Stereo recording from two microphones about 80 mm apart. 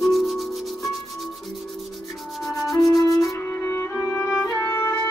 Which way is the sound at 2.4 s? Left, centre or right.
Centre.